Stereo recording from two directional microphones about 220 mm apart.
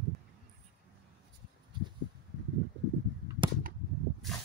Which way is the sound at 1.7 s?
20° right (ahead or behind).